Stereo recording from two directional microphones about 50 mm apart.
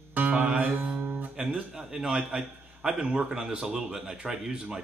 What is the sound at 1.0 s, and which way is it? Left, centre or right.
Guitar, right.